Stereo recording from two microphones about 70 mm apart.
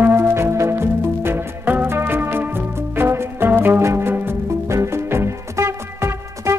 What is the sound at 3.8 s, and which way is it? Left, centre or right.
Music, right.